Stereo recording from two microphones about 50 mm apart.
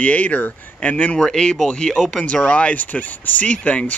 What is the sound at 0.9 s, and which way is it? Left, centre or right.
Speech, left.